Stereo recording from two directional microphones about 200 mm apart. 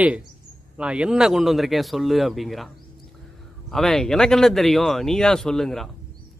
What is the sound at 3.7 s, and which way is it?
A man's voice, centre (ahead or behind).